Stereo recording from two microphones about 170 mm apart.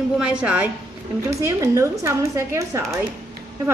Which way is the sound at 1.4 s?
20° right (ahead or behind).